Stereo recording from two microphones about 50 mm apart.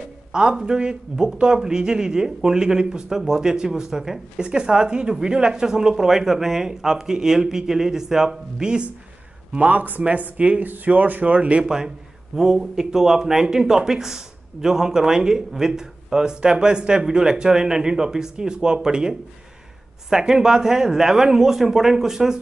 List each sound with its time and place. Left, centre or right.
0.3 s speech: centre
9.5 s speech: right
11.6 s speech: centre